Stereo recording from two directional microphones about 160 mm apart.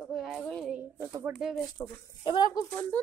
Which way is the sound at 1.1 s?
10° right (ahead or behind).